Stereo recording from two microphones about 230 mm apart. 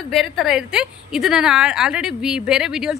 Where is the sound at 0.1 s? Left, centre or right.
Centre.